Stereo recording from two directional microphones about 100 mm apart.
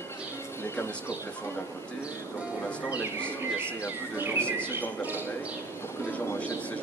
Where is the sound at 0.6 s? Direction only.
25° left (ahead or behind).